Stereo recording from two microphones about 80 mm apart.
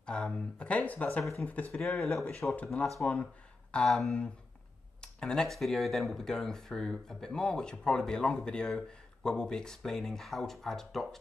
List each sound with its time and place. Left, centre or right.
0.0 s speech: centre
2.0 s speech: centre
2.5 s speech: centre
3.7 s speech: centre